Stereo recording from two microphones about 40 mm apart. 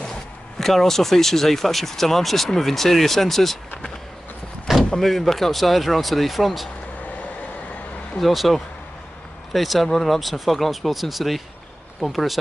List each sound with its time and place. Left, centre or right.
0.6 s speech: centre
4.9 s speech: centre
8.2 s speech: centre